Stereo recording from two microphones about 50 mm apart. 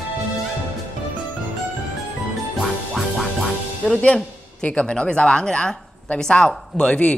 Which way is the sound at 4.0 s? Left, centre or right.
Left.